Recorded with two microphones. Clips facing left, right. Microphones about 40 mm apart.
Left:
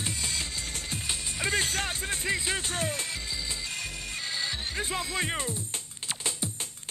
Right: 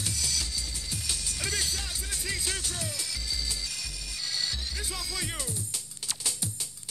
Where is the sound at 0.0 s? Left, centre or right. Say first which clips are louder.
Left 1 dB; left.